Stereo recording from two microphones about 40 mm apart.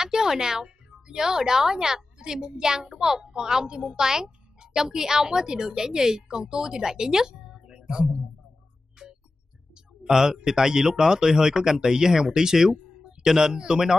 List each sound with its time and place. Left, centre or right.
0.0 s a woman's voice: centre
9.0 s music: right
10.0 s speech: centre